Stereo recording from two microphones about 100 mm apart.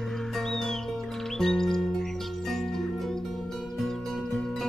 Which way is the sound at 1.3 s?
5° left (ahead or behind).